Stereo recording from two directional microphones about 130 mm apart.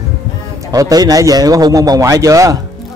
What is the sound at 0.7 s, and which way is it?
A man's voice, 30° right (ahead or behind).